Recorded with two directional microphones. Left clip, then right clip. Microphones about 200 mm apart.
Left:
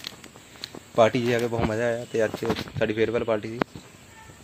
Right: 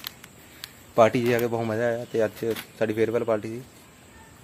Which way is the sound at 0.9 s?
Centre (ahead or behind).